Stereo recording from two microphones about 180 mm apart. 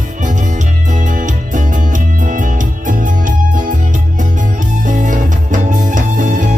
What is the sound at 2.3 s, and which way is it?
Music, 45° right (ahead or behind).